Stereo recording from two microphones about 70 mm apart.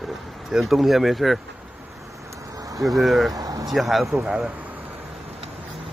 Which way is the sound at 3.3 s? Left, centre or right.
Right.